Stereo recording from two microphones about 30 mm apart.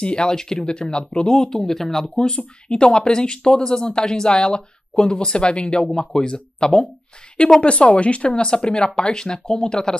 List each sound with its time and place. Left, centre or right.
0.0 s speech: left
0.4 s speech: centre
0.7 s speech: left; by 2.0 s centre
2.1 s speech: left
5.9 s speech: centre
6.2 s speech: left
7.6 s speech: left